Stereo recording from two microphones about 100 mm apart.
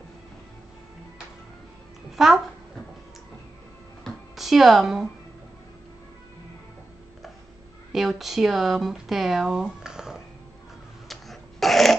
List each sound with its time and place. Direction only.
2.1 s a child's voice: 5° right (ahead or behind)
4.0 s a sound: centre (ahead or behind)
7.9 s speech: centre (ahead or behind)
11.1 s dog: centre (ahead or behind)